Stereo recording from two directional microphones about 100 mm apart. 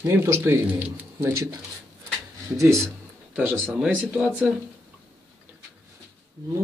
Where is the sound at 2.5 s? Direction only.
30° right (ahead or behind).